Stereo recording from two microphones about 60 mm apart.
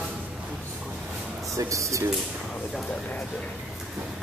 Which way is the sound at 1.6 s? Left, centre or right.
Right.